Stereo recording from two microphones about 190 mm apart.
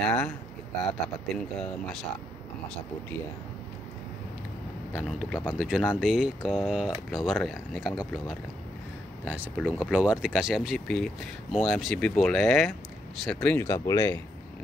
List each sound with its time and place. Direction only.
0.0 s speech: 5° left (ahead or behind)
5.0 s speech: centre (ahead or behind); by 14.2 s 15° left (ahead or behind)